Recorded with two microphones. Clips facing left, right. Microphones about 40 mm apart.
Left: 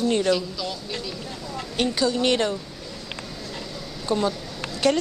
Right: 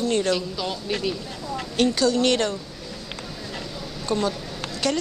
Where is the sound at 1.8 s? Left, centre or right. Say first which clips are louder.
Right 2 dB; centre.